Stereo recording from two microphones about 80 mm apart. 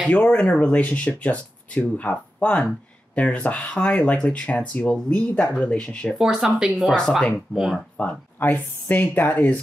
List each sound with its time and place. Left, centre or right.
0.1 s speech: centre
6.1 s speech: centre
8.0 s speech: left